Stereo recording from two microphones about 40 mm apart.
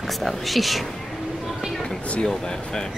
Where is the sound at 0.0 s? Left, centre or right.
Centre.